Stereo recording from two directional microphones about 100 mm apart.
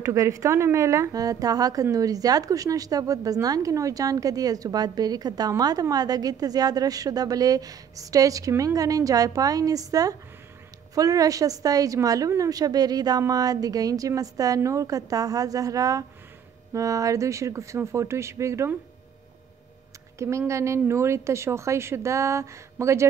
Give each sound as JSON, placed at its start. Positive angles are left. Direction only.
{"t": 0.0, "sound": "a woman's voice", "side_deg": -35}
{"t": 20.2, "sound": "a woman's voice", "side_deg": -30}